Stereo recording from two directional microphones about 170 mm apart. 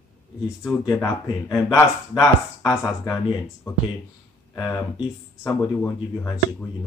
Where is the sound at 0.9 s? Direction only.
15° left (ahead or behind).